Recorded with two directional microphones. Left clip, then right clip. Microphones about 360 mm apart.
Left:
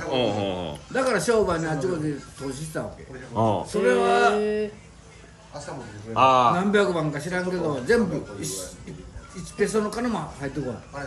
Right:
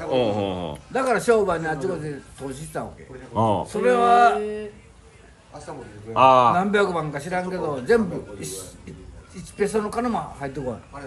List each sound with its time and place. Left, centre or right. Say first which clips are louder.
0.1 s a man's voice: right 2 dB; centre
0.9 s a man's voice: right 2 dB; centre
3.3 s speech: right 2 dB; right
3.7 s a man's voice: right 4 dB; centre
4.4 s a sound: left 3 dB; left
6.1 s speech: right 3 dB; centre
6.6 s a man's voice: right 1 dB; centre